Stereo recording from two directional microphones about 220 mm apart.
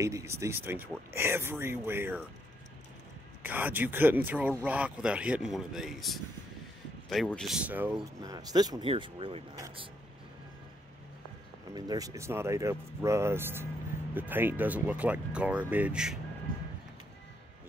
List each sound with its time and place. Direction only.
0.0 s speech: 15° right (ahead or behind)
3.4 s speech: 10° right (ahead or behind)
11.7 s speech: 15° right (ahead or behind)